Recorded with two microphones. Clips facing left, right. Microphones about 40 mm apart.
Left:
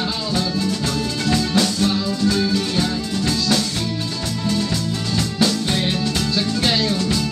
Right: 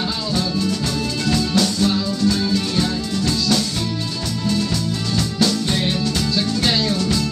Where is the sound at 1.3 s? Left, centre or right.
Left.